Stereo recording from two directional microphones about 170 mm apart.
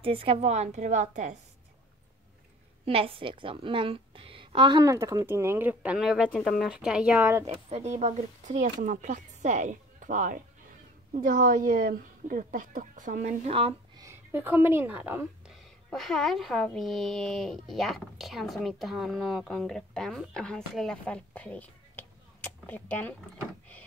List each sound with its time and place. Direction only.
0.0 s a woman's voice: 35° right (ahead or behind)
2.8 s a woman's voice: 35° right (ahead or behind); by 7.4 s 10° right (ahead or behind)
7.4 s speech: 40° right (ahead or behind)
14.0 s speech: 10° right (ahead or behind)
15.9 s speech: centre (ahead or behind)